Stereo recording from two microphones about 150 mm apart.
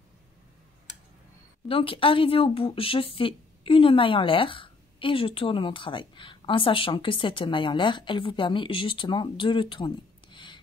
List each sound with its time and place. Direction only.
1.7 s speech: 35° left (ahead or behind)